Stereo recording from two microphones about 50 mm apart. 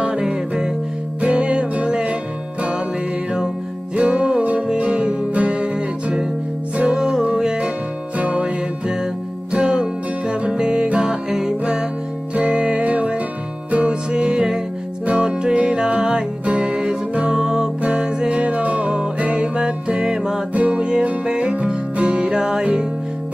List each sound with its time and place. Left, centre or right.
0.0 s music: centre
4.0 s music: centre
8.2 s music: right
9.6 s music: centre
20.5 s music: right